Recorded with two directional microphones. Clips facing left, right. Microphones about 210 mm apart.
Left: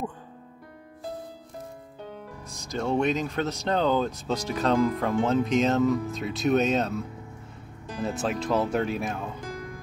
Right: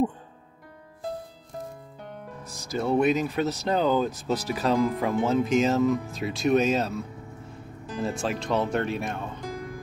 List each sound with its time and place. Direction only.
2.7 s speech: 5° right (ahead or behind)
8.0 s speech: centre (ahead or behind)